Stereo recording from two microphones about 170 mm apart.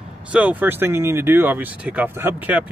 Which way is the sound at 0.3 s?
10° right (ahead or behind).